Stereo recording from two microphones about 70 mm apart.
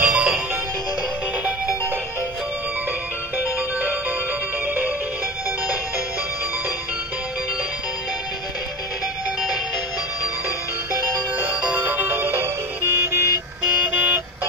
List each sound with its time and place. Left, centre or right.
0.0 s music: centre
4.6 s music: right
11.7 s music: right
13.7 s vehicle: right